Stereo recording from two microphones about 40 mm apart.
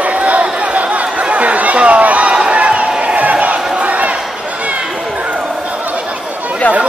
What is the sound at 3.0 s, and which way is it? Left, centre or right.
Crowd, right.